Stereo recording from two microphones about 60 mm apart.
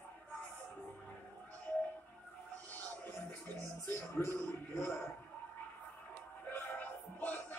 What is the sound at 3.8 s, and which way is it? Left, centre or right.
Speech, left.